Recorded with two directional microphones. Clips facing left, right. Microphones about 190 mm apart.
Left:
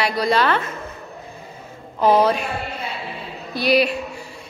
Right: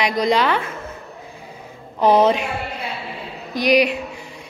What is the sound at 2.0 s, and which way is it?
Speech, 20° right (ahead or behind).